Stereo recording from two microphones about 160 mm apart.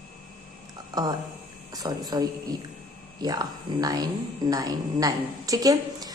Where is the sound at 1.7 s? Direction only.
25° right (ahead or behind).